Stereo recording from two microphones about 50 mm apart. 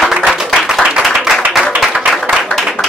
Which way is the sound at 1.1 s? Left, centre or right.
Centre.